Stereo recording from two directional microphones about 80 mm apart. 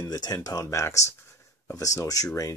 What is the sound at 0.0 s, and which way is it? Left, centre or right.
Speech, left.